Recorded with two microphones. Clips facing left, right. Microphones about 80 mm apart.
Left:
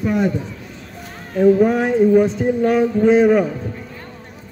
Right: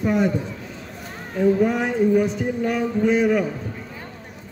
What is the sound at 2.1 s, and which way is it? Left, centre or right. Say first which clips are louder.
A man's voice: left 5 dB; left.